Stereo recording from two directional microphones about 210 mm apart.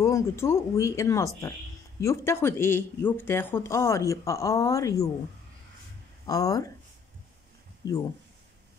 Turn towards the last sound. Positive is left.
turn(degrees=15)  # may be behind; listen again after turning